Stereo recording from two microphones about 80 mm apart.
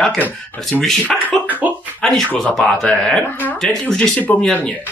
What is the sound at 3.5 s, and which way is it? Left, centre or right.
Speech, centre.